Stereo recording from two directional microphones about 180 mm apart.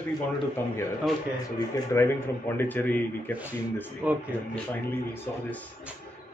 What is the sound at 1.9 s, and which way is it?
Speech, 15° left (ahead or behind).